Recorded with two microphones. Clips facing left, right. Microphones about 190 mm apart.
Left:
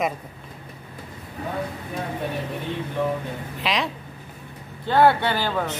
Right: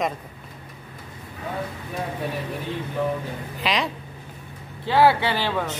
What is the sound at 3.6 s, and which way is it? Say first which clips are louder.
Speech: right 1 dB; centre (ahead or behind).